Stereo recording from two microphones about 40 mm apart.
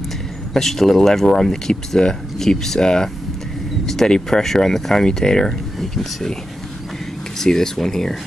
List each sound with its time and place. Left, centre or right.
0.6 s speech: centre
7.3 s speech: centre